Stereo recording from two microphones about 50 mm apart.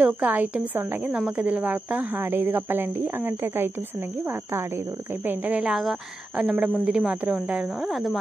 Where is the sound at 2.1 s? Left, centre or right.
Right.